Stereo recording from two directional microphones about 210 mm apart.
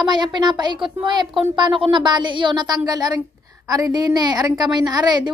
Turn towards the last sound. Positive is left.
turn(degrees=-20)  # may be behind; listen again after turning